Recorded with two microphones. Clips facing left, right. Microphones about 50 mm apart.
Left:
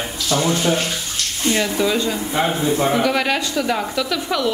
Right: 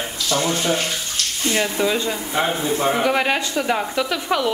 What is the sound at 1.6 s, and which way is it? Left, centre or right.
Speech, centre.